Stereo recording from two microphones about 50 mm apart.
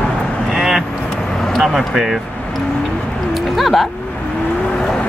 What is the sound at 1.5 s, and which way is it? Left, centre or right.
Speech, centre.